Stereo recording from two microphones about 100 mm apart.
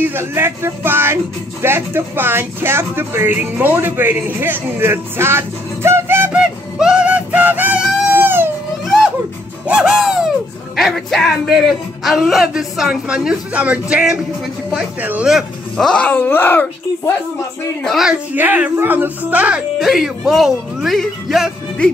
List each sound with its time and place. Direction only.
0.0 s speech: 25° right (ahead or behind)
6.3 s music: 10° right (ahead or behind)
8.1 s baby cry: 20° right (ahead or behind)
9.7 s owl: 5° right (ahead or behind)
10.8 s speech: centre (ahead or behind)
15.2 s speech: 5° right (ahead or behind)
15.9 s speech: 15° left (ahead or behind)
17.8 s speech: centre (ahead or behind)
18.3 s speech: 15° right (ahead or behind); by 21.5 s centre (ahead or behind)